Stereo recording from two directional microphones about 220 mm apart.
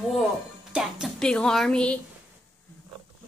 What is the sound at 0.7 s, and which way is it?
Speech, centre (ahead or behind).